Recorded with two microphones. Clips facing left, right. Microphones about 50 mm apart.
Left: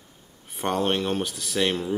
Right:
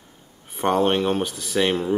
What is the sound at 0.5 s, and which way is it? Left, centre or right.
Speech, centre.